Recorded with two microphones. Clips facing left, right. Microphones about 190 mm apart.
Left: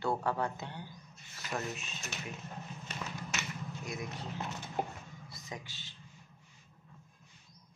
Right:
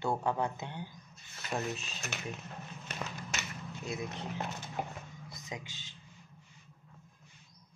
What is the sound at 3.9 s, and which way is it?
Speech, 25° right (ahead or behind).